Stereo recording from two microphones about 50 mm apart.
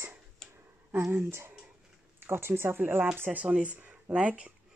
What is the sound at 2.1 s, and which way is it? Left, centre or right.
Speech, right.